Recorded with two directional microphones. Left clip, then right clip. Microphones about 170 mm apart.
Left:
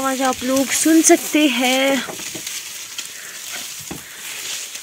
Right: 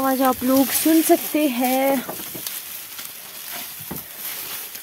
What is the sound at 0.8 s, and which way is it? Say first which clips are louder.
Speech: left 6 dB; 5° left (ahead or behind).